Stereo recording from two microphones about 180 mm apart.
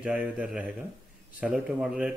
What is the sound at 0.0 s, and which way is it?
Speech, 5° right (ahead or behind).